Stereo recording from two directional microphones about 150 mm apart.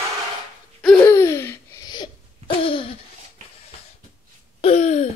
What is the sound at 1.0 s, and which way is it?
Laughter, 20° left (ahead or behind).